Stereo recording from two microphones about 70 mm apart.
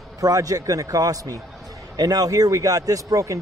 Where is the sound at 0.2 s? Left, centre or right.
Right.